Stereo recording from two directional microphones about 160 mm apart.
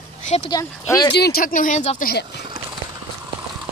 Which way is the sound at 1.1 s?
80° left.